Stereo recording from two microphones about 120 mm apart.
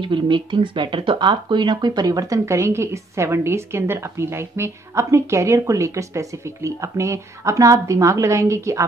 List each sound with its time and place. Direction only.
0.0 s speech: 40° right (ahead or behind); by 8.8 s 25° right (ahead or behind)